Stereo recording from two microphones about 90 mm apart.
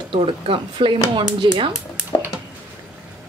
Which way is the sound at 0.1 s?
85° right.